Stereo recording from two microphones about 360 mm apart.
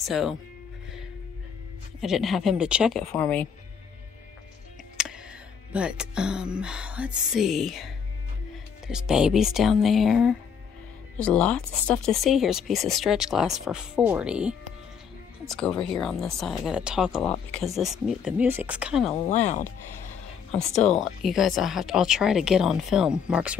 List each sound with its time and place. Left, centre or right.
0.0 s speech: centre
2.0 s speech: centre
5.0 s music: centre
5.7 s speech: centre
19.0 s speech: centre
21.0 s speech: centre